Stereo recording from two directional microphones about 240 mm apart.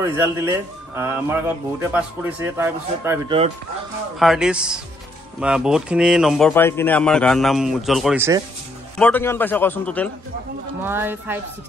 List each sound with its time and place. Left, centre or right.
0.0 s a man's voice: centre
3.3 s speech: right
4.2 s a man's voice: centre
10.8 s a man's voice: centre